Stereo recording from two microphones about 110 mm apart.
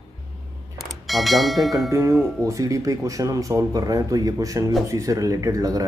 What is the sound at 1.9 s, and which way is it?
Speech, 25° right (ahead or behind).